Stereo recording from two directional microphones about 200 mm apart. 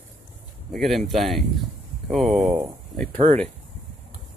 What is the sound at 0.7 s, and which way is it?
Speech, centre (ahead or behind).